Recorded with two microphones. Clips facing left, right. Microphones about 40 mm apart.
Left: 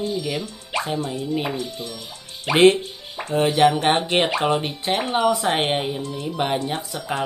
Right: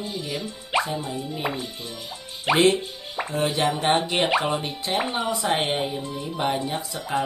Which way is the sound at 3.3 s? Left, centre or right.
Left.